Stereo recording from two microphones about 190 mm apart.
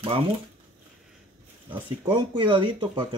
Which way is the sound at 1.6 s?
25° right (ahead or behind).